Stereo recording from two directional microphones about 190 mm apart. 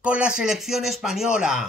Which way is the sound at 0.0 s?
5° right (ahead or behind).